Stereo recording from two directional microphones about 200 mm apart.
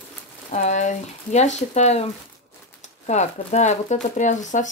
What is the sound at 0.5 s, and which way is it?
Speech, 35° left (ahead or behind).